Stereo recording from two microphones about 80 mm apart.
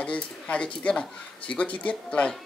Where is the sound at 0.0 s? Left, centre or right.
Centre.